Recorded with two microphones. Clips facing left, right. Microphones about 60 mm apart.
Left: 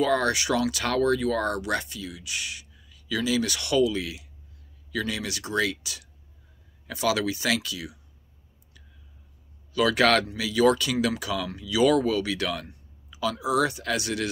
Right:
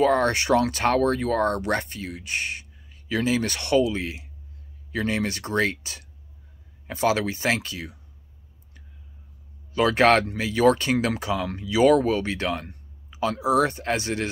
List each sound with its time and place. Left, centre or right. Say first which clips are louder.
0.0 s speech: right 3 dB; right
9.8 s speech: right 3 dB; right